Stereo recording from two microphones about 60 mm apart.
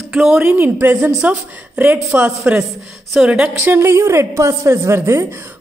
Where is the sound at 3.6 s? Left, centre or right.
Right.